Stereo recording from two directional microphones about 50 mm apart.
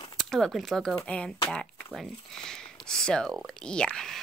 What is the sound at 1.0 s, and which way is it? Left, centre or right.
Speech, left.